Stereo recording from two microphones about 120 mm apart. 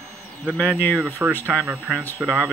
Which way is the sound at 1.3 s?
10° left (ahead or behind).